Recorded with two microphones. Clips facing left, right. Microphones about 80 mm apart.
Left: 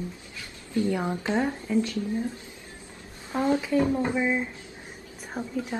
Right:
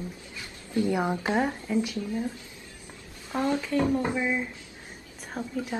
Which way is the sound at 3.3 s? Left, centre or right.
Centre.